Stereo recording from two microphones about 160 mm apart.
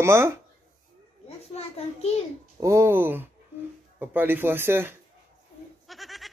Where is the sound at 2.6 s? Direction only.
15° right (ahead or behind).